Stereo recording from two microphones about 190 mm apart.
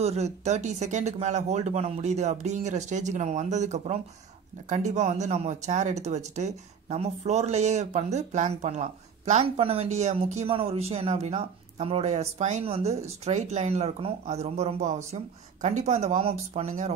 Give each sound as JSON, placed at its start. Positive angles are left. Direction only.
{"t": 0.0, "sound": "speech", "side_deg": -35}